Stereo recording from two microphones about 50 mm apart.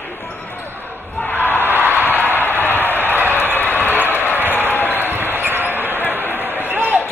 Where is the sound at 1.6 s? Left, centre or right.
Right.